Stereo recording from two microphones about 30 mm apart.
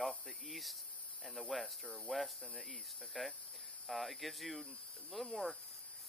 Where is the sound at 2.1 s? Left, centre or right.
Left.